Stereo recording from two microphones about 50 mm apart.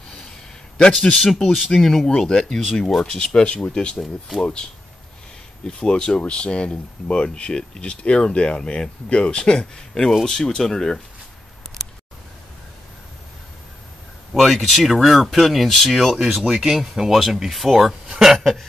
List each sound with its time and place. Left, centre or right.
0.7 s speech: centre
1.2 s speech: centre
3.9 s speech: centre
5.7 s speech: centre
14.3 s speech: centre